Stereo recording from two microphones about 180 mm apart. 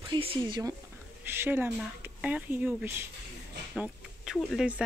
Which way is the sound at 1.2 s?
10° right (ahead or behind).